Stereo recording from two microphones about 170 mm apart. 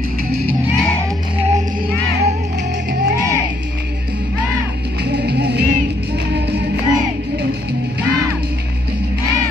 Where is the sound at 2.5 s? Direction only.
80° right.